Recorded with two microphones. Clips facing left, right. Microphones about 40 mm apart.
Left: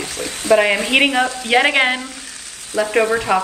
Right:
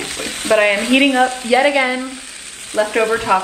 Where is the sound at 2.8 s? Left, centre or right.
Right.